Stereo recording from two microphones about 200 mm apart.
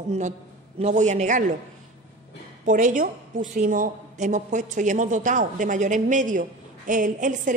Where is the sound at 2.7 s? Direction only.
40° right (ahead or behind).